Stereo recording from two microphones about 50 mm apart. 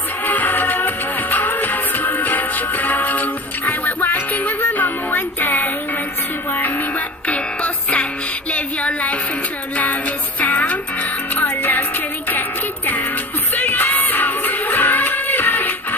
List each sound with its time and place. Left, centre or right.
0.2 s music: left
7.2 s music: left